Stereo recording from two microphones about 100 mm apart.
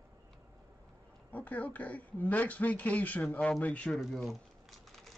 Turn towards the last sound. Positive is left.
turn(degrees=0)  # may be behind; listen again after turning